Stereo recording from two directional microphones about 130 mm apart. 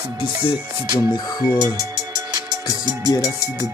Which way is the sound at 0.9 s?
30° left (ahead or behind).